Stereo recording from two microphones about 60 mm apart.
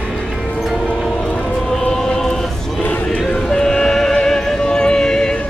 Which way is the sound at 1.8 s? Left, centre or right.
Centre.